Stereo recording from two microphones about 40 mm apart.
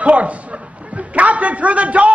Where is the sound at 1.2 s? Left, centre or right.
Right.